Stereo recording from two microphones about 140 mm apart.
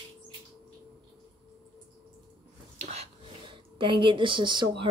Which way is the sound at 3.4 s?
35° right (ahead or behind).